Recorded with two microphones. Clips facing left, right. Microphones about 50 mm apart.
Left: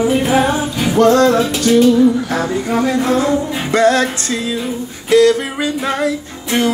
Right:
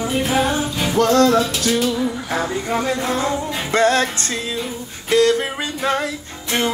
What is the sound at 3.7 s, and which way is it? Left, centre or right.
Music, right.